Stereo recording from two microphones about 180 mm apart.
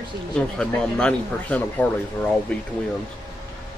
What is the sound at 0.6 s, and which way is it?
Speech, 5° left (ahead or behind).